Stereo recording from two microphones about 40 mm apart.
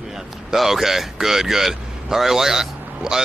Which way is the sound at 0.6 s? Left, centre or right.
Centre.